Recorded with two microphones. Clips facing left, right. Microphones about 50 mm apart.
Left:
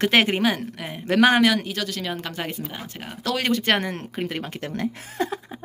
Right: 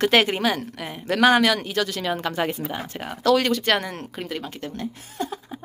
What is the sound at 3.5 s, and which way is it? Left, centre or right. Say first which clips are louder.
Speech: even; left.